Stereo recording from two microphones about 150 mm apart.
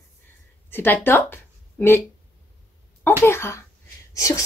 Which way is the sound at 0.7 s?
15° left (ahead or behind).